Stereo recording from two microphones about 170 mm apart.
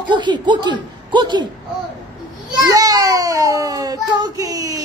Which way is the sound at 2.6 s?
20° right (ahead or behind).